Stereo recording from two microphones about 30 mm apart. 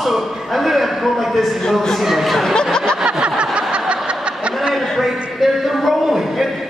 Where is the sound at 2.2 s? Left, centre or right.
Centre.